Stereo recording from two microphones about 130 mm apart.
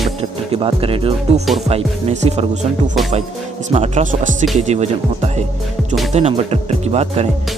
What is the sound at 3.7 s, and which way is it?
Speech, 60° right (ahead or behind).